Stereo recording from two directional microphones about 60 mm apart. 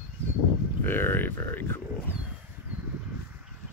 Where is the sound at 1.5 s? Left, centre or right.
Left.